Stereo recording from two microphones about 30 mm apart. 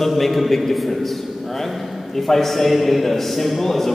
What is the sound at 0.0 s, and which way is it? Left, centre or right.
A man's voice, centre.